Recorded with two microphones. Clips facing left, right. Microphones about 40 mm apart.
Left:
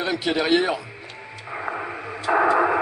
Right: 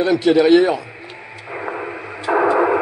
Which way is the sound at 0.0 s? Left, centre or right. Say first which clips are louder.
Right 9 dB; centre.